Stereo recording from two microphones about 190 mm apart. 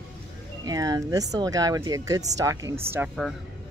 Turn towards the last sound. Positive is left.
turn(degrees=-10)  # may be behind; listen again after turning